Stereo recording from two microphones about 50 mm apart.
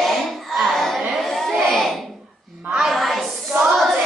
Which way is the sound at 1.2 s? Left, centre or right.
Centre.